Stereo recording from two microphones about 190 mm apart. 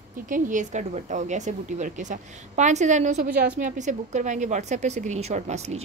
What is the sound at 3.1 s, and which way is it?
Speech, 55° right (ahead or behind).